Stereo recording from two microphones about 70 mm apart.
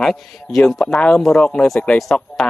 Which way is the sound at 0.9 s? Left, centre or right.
Centre.